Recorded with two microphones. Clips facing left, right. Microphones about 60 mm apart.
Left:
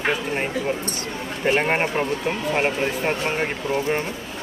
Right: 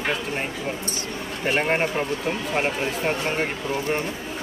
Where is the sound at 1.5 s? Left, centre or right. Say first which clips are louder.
Left 2 dB; centre.